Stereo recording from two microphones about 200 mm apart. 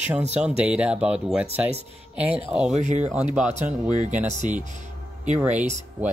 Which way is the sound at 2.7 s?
35° right (ahead or behind).